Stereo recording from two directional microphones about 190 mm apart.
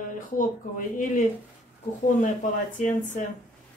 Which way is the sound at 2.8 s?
40° left (ahead or behind).